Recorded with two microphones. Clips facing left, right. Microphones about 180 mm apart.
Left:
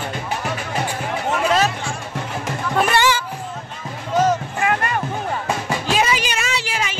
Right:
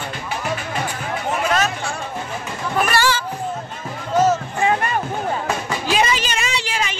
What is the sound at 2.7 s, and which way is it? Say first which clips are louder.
Speech: left 1 dB; 20° left (ahead or behind).